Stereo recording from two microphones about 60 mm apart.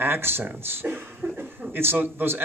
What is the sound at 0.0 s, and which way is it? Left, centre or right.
Speech, right.